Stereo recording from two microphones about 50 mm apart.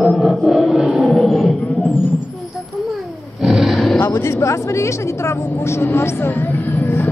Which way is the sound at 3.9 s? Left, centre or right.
Left.